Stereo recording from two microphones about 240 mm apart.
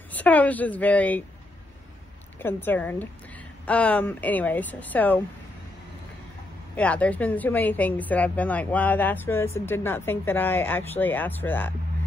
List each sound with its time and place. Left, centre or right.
0.1 s speech: centre
2.3 s speech: centre
6.8 s speech: centre